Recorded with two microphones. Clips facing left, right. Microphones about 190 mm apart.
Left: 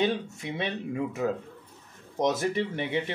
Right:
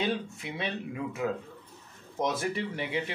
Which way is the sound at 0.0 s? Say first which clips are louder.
Left 4 dB; 20° left (ahead or behind).